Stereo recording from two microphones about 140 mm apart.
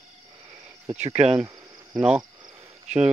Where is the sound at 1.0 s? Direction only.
55° right (ahead or behind).